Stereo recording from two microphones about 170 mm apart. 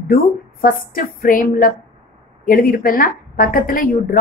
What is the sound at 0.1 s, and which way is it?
A woman's voice, 55° left (ahead or behind).